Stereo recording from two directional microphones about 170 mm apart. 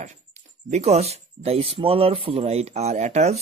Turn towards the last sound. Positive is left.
turn(degrees=-40)  # may be behind; listen again after turning